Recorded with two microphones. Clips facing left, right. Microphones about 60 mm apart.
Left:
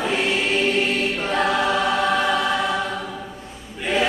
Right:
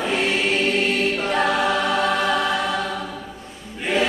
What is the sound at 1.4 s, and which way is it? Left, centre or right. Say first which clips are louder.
Choir: left 1 dB; left.